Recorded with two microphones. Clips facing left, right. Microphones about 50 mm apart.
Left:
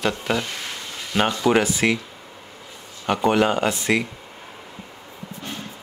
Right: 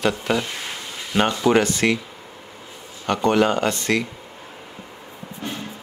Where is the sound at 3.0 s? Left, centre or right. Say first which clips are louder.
Right 1 dB; centre.